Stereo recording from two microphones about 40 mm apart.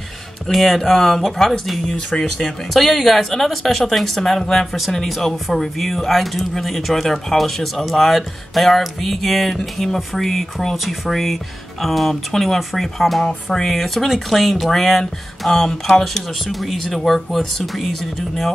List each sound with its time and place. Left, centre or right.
0.5 s speech: centre
2.0 s speech: centre
2.7 s speech: centre